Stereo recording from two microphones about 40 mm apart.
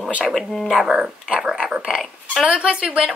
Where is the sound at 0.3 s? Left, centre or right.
Centre.